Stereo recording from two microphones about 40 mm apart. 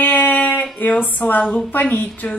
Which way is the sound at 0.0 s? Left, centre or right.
Left.